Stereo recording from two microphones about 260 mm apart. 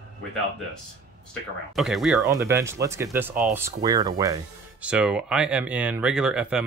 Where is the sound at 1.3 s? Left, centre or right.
Centre.